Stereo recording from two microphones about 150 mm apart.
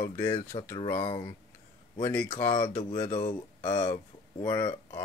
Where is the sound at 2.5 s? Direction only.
25° left (ahead or behind).